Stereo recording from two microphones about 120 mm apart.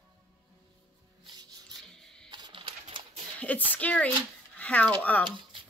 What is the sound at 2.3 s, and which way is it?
Typewriter, 40° right (ahead or behind).